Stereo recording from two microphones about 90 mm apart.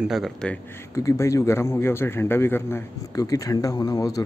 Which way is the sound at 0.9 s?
35° left (ahead or behind).